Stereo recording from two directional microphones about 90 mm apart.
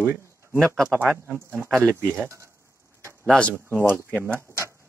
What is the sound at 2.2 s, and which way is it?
Speech, 30° right (ahead or behind).